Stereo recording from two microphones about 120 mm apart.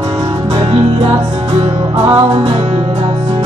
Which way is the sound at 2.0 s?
30° right (ahead or behind).